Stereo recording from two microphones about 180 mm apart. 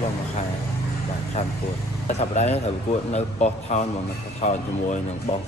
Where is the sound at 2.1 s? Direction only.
40° left (ahead or behind).